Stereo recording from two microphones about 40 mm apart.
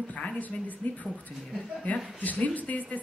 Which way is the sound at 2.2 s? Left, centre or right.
Left.